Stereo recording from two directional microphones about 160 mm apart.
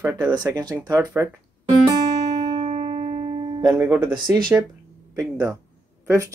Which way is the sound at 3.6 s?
20° right (ahead or behind).